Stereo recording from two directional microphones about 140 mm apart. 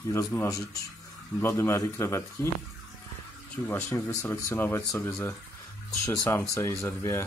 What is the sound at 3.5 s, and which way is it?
Speech, 10° left (ahead or behind).